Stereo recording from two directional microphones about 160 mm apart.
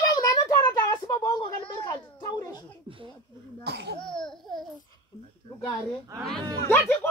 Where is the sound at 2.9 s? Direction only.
35° right (ahead or behind).